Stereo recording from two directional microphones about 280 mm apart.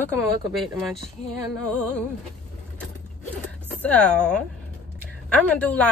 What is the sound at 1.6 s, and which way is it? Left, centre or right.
Speech, centre.